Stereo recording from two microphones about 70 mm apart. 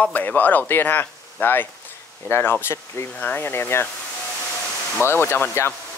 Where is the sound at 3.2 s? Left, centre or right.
Left.